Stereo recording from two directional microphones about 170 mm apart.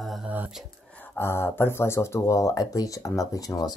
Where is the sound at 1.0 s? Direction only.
15° left (ahead or behind).